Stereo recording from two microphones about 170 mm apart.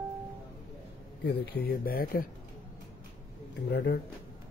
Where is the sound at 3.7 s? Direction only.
90° left.